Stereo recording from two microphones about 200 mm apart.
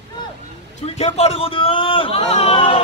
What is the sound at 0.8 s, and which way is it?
A man's voice, 30° left (ahead or behind).